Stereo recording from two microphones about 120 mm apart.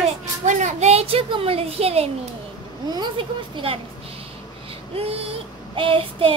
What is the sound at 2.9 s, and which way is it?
Child singing, 40° right (ahead or behind).